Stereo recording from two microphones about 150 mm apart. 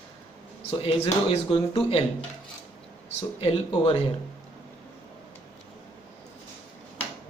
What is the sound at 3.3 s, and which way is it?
Speech, 40° left (ahead or behind).